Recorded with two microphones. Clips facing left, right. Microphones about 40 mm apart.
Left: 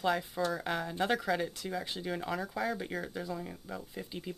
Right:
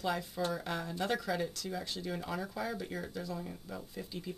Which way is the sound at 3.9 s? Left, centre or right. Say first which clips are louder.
Left 1 dB; left.